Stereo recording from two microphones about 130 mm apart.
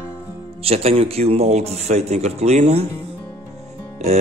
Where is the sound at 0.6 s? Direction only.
50° right (ahead or behind).